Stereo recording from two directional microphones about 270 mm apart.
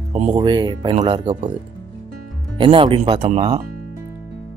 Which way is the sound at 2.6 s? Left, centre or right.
Centre.